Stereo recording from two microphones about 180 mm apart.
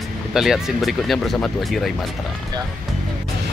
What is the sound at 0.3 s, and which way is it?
Speech, centre (ahead or behind).